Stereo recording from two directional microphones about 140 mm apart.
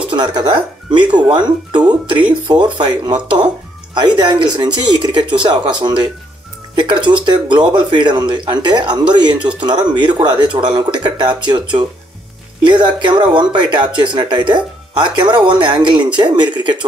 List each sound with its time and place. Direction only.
0.1 s speech: 35° right (ahead or behind)